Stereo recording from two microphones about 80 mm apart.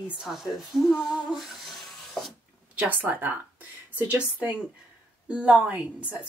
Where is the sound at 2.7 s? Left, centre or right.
Right.